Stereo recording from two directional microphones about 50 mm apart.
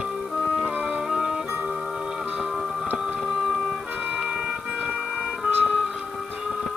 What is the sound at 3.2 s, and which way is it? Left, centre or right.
Music, centre.